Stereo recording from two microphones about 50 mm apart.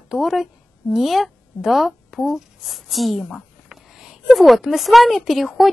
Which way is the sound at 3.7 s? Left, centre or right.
Centre.